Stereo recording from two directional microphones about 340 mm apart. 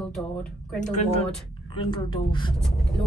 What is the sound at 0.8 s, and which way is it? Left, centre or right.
A woman's voice, centre.